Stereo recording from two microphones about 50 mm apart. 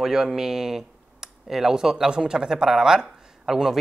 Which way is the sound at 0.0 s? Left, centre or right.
Centre.